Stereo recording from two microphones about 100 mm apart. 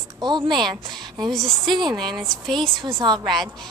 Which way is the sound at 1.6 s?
50° right (ahead or behind).